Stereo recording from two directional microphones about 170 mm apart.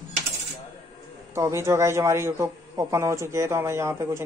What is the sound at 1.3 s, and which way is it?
A man's voice, 15° right (ahead or behind).